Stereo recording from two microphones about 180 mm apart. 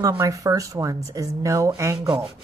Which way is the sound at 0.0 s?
20° right (ahead or behind).